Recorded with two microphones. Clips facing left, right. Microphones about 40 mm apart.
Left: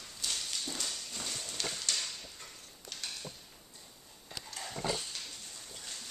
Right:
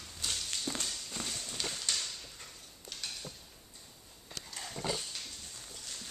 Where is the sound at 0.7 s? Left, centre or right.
Right.